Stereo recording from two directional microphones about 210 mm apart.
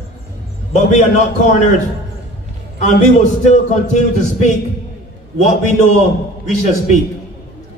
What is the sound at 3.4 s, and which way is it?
A man's voice, 35° left (ahead or behind).